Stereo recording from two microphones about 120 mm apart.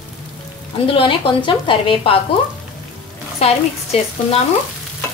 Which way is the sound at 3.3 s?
60° left (ahead or behind).